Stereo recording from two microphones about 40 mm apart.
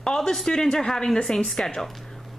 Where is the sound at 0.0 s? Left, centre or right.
Centre.